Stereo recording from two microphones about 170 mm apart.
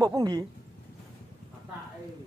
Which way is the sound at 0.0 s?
20° right (ahead or behind).